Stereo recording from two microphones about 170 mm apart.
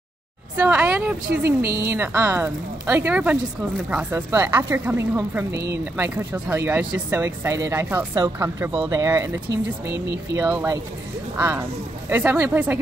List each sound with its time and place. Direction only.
0.6 s a woman's voice: 5° right (ahead or behind)